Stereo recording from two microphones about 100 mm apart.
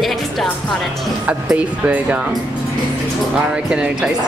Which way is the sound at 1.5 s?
15° right (ahead or behind).